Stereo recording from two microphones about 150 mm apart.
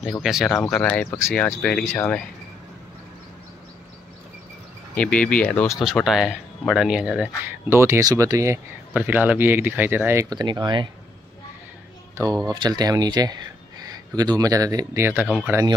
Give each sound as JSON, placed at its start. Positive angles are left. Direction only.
{"t": 0.0, "sound": "speech", "side_deg": 0}
{"t": 0.7, "sound": "speech", "side_deg": 10}
{"t": 4.9, "sound": "speech", "side_deg": 10}
{"t": 5.8, "sound": "speech", "side_deg": 0}
{"t": 10.3, "sound": "speech", "side_deg": -30}
{"t": 12.2, "sound": "speech", "side_deg": -25}